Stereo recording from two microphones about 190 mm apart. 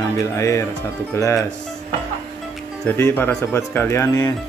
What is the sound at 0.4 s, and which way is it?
Speech, 15° left (ahead or behind).